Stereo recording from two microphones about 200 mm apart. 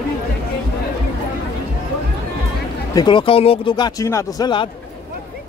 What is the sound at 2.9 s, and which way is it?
A man's voice, 25° left (ahead or behind).